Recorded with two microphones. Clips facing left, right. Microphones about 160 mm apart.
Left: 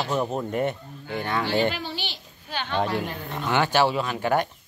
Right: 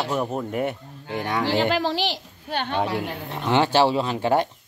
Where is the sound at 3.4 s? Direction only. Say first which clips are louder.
Right 3 dB; 25° right (ahead or behind).